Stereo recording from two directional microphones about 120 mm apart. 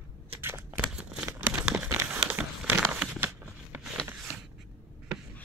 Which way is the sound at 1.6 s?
10° right (ahead or behind).